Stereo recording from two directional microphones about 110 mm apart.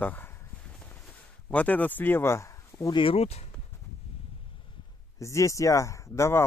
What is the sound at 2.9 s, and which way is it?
Speech, 55° left (ahead or behind).